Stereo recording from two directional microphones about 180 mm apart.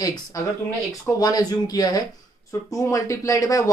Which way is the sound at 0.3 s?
15° left (ahead or behind).